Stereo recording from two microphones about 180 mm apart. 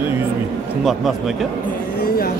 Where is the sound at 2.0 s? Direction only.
55° left (ahead or behind).